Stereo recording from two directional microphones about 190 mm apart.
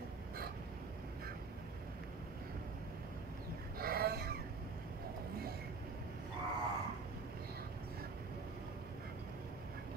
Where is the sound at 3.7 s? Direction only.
55° right (ahead or behind).